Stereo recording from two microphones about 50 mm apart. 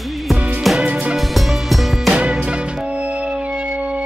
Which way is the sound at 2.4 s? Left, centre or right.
Right.